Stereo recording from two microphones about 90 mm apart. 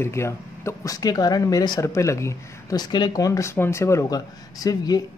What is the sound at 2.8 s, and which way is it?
Speech, 55° left (ahead or behind).